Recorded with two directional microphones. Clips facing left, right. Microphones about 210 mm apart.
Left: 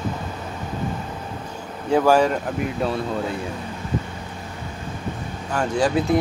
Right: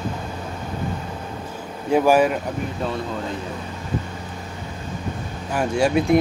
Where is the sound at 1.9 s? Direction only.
10° right (ahead or behind).